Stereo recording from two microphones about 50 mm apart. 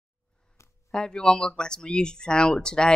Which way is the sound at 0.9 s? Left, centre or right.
Centre.